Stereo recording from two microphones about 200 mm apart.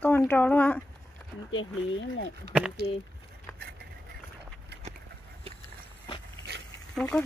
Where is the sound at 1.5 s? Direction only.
70° left (ahead or behind).